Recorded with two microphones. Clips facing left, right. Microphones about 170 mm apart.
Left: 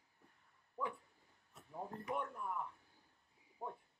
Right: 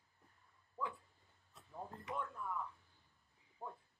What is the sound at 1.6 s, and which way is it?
Speech, 15° left (ahead or behind).